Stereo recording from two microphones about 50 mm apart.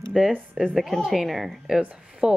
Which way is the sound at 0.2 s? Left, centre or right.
Centre.